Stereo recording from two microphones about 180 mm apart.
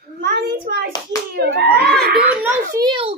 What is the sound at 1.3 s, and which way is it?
Slap, 65° right (ahead or behind).